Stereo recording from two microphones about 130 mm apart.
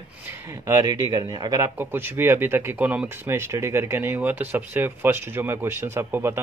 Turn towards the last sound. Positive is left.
turn(degrees=-20)  # may be behind; listen again after turning